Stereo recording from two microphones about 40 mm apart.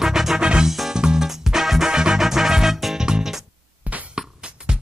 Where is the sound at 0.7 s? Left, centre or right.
Centre.